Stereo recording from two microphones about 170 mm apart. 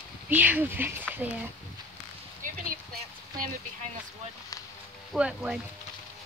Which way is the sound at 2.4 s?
55° right (ahead or behind).